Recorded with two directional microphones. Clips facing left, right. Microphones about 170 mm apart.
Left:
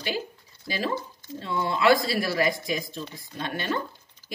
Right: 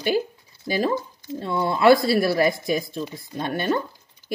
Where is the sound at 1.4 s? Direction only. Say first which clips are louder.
Right 5 dB; 45° right (ahead or behind).